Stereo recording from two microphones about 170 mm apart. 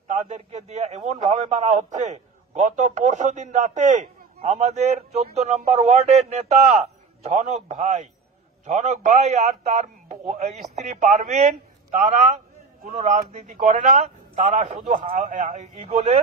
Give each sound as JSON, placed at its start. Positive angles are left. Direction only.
{"t": 0.1, "sound": "a man's voice", "side_deg": -45}
{"t": 15.0, "sound": "a man's voice", "side_deg": -50}